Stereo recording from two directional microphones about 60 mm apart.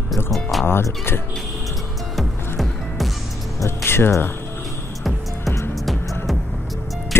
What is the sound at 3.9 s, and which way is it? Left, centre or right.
Speech, left.